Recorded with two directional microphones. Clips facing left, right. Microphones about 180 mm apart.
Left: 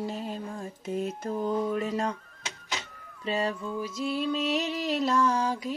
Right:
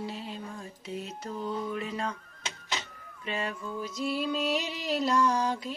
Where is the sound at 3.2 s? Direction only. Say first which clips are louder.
Left 5 dB; 35° left (ahead or behind).